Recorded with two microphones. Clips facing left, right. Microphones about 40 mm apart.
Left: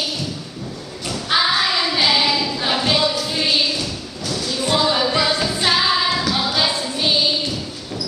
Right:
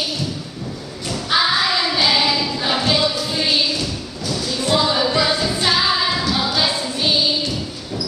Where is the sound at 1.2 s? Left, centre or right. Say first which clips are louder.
Even; centre.